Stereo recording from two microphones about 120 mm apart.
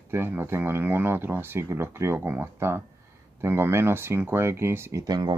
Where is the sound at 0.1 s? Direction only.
20° right (ahead or behind).